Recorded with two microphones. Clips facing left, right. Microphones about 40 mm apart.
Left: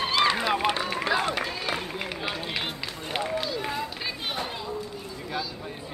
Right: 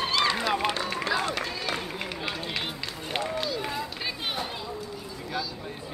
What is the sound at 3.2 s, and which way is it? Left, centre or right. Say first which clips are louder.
Speech: left 1 dB; centre.